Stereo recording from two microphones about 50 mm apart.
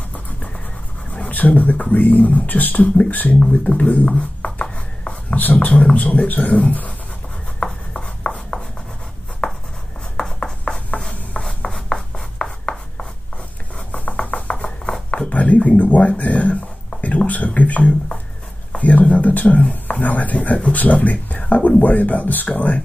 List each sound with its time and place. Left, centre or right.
1.1 s speech: left
3.3 s writing: left
5.4 s speech: left
7.6 s writing: left
10.1 s a sound: centre
11.4 s rub: centre
13.9 s a sound: left
15.3 s a sound: left
20.7 s speech: left